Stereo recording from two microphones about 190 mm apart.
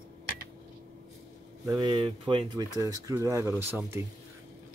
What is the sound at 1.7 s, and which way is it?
Speech, 25° right (ahead or behind).